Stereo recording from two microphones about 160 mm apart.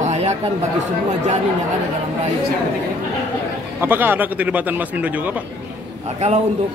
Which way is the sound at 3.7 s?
10° right (ahead or behind).